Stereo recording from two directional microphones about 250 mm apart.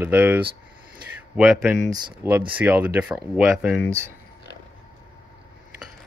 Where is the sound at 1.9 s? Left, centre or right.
Centre.